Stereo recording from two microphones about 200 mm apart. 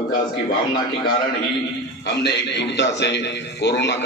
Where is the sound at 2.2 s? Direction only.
60° left (ahead or behind).